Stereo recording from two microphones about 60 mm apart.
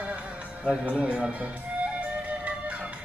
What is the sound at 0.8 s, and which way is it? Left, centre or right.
Speech, right.